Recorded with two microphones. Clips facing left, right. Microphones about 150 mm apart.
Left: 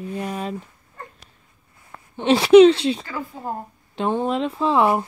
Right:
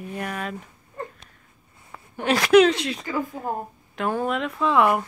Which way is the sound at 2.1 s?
25° left (ahead or behind).